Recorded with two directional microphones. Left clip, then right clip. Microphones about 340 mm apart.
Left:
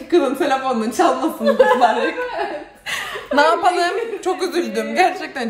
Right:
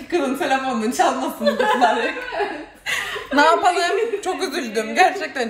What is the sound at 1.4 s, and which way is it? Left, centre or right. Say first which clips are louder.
Speech: left 5 dB; left.